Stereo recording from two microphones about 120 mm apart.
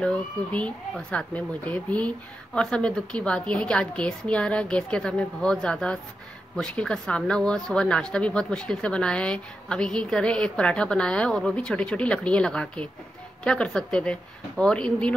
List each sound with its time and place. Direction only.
0.0 s speech: 10° left (ahead or behind)